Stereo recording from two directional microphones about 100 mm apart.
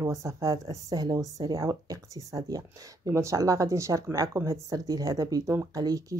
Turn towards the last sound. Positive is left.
turn(degrees=-40)  # may be behind; listen again after turning